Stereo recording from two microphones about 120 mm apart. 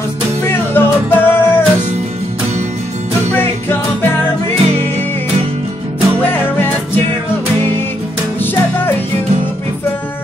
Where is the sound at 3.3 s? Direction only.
15° left (ahead or behind).